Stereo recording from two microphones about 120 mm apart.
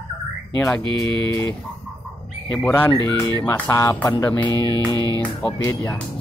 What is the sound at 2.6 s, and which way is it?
Speech, 15° left (ahead or behind).